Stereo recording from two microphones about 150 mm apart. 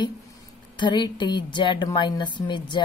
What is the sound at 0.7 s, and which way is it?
A woman's voice, 30° left (ahead or behind).